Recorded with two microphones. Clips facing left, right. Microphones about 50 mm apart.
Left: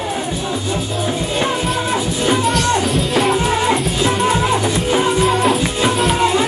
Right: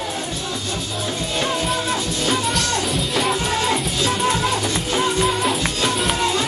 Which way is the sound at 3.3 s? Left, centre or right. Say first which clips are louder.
Left 5 dB; centre.